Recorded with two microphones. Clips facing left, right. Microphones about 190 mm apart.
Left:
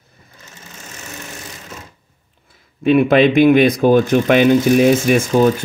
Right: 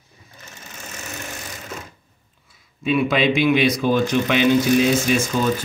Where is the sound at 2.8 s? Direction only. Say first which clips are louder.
Left 7 dB; 55° left (ahead or behind).